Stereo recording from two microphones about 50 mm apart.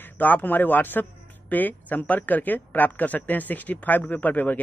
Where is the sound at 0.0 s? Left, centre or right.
Left.